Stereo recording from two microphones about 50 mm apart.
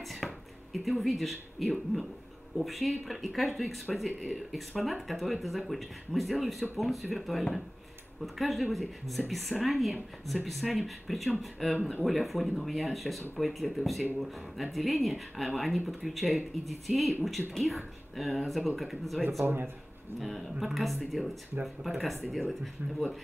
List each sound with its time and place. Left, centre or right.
0.0 s a sound: centre
0.8 s speech: centre
19.4 s speech: right
20.2 s speech: centre